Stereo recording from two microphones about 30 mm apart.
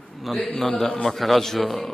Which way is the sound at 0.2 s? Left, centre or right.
Centre.